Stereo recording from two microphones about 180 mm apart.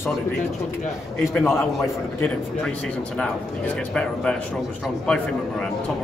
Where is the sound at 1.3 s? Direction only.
15° left (ahead or behind).